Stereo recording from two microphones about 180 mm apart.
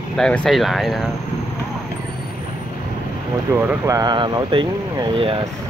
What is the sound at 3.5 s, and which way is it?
Speech, 15° right (ahead or behind).